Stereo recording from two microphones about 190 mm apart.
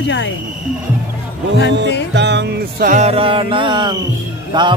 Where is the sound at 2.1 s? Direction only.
65° right (ahead or behind).